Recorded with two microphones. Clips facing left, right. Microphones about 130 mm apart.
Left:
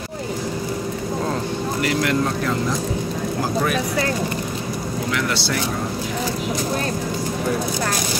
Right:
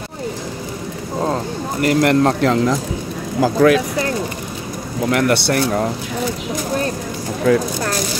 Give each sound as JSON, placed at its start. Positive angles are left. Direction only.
{"t": 1.8, "sound": "speech", "side_deg": -50}
{"t": 2.2, "sound": "speech", "side_deg": -80}
{"t": 5.1, "sound": "speech", "side_deg": -55}
{"t": 7.5, "sound": "speech", "side_deg": -90}